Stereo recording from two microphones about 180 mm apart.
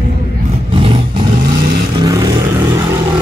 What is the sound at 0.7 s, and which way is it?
Vehicle, 30° right (ahead or behind).